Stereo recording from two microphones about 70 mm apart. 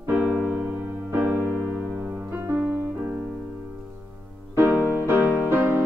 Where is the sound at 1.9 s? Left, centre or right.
Right.